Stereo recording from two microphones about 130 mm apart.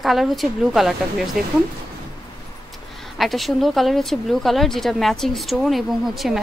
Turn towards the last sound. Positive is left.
turn(degrees=0)  # may be behind; listen again after turning